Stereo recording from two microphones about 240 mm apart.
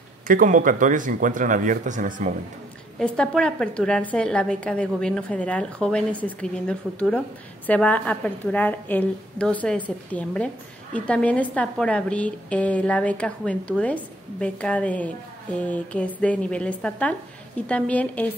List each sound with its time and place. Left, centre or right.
0.3 s speech: right
3.0 s a woman's voice: centre